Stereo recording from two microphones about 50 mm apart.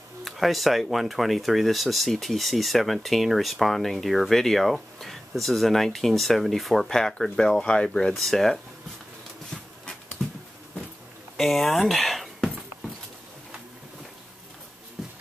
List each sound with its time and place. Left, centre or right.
0.2 s speech: centre
8.1 s speech: centre
10.2 s a sound: centre
11.3 s speech: centre
15.0 s music: centre